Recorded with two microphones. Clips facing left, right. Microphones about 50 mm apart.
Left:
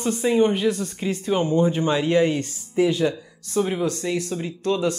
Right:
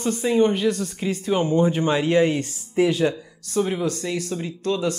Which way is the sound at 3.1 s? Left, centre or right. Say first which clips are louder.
Even; centre.